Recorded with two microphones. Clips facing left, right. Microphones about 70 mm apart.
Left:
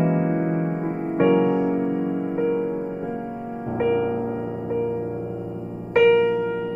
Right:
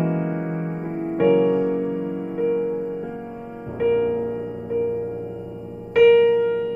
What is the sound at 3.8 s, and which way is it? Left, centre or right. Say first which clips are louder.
Music: right 3 dB; centre.